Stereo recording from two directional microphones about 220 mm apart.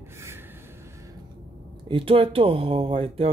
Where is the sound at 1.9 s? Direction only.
25° right (ahead or behind).